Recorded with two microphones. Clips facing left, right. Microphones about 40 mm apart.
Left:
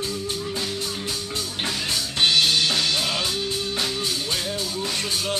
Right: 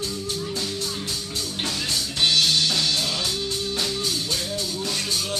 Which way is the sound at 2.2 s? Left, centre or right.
Centre.